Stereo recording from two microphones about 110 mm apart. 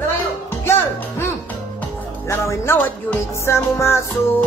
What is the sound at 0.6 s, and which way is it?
Music, 20° left (ahead or behind).